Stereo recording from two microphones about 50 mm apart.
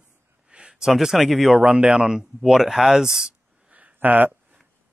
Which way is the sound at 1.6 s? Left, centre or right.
Centre.